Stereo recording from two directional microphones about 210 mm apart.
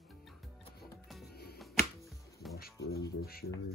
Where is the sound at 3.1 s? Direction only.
45° left (ahead or behind).